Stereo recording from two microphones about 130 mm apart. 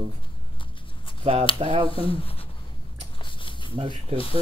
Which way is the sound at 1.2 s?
55° right (ahead or behind).